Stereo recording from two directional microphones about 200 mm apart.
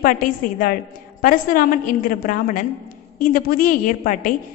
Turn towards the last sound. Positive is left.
turn(degrees=40)  # may be behind; listen again after turning